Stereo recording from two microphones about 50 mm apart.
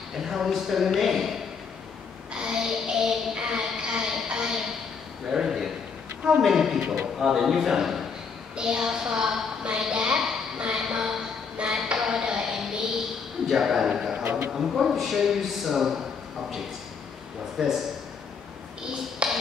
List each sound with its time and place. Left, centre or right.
0.2 s a man's voice: centre
2.3 s a sound: centre
6.4 s a man's voice: centre
11.5 s music: centre
12.0 s a sound: centre
13.5 s a woman's voice: centre
17.6 s a woman's voice: centre
19.2 s music: centre